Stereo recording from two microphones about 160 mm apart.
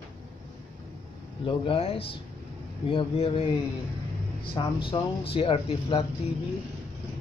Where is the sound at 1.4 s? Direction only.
35° left (ahead or behind).